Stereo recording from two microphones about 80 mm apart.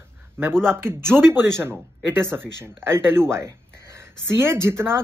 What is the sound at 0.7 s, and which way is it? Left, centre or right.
Speech, right.